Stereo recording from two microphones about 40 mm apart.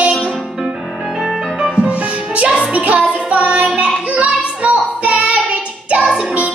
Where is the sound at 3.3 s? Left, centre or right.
Right.